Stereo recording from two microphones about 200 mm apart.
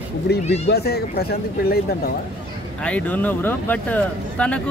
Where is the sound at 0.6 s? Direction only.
55° left (ahead or behind).